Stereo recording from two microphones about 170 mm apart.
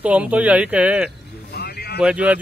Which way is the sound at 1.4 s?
70° left (ahead or behind).